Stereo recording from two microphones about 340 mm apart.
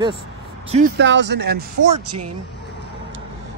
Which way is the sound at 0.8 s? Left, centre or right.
Right.